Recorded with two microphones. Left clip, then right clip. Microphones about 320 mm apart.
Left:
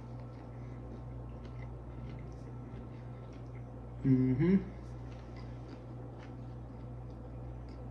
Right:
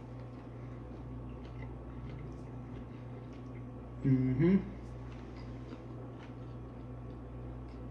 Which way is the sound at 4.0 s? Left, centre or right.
Centre.